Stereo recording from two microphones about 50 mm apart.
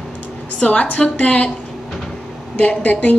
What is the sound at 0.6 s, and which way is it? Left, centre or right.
Speech, left.